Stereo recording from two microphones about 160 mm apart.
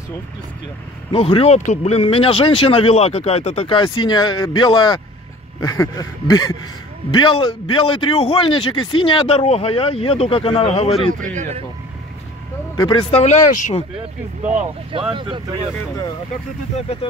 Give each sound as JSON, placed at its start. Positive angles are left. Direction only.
{"t": 1.1, "sound": "a man's voice", "side_deg": 35}
{"t": 11.3, "sound": "speech", "side_deg": -45}
{"t": 12.7, "sound": "a man's voice", "side_deg": 30}
{"t": 15.1, "sound": "speech", "side_deg": -30}
{"t": 16.7, "sound": "a man's voice", "side_deg": 40}